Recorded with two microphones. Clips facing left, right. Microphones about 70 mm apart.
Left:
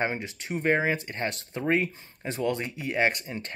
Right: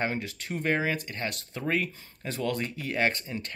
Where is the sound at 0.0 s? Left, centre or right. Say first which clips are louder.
Left 1 dB; left.